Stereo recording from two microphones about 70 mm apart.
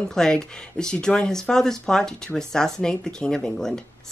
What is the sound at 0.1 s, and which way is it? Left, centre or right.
Speech, centre.